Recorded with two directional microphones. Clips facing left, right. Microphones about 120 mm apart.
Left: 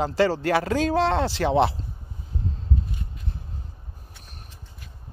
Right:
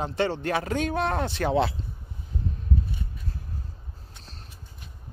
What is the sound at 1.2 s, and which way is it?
Speech, 30° left (ahead or behind).